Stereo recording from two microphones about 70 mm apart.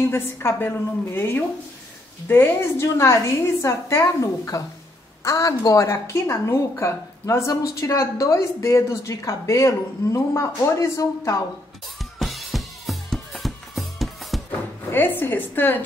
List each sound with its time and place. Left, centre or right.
0.0 s a woman's voice: left
12.2 s music: centre
14.9 s a woman's voice: left